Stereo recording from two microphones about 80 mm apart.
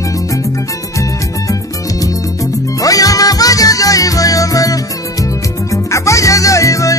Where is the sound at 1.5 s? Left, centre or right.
Left.